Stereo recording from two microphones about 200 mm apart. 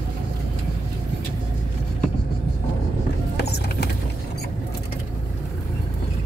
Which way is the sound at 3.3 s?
55° left (ahead or behind).